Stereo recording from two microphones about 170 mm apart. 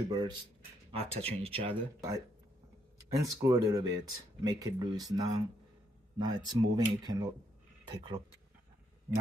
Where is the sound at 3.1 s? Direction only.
20° right (ahead or behind).